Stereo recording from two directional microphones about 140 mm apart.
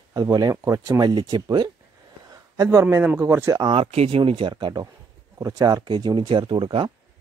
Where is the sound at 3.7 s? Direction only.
45° right (ahead or behind).